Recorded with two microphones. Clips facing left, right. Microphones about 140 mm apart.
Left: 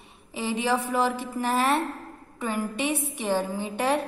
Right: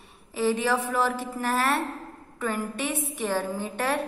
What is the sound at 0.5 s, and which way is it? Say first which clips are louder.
A woman's voice: even; 15° left (ahead or behind).